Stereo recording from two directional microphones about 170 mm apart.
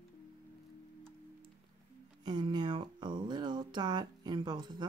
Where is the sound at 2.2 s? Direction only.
25° right (ahead or behind).